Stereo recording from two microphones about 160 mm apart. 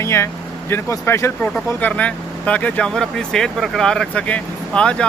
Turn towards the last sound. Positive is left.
turn(degrees=5)  # may be behind; listen again after turning